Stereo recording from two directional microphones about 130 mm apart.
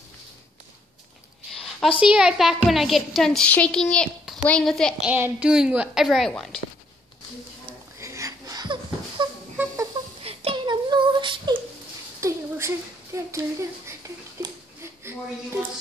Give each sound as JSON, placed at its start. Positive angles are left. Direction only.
{"t": 1.5, "sound": "a woman's voice", "side_deg": 0}
{"t": 5.0, "sound": "a woman's voice", "side_deg": -10}
{"t": 8.0, "sound": "wheeze", "side_deg": -25}
{"t": 9.2, "sound": "a sound", "side_deg": -35}
{"t": 10.2, "sound": "child singing", "side_deg": -45}
{"t": 12.2, "sound": "a sound", "side_deg": -20}